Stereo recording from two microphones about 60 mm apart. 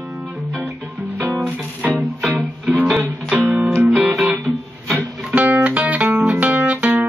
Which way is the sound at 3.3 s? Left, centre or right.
Right.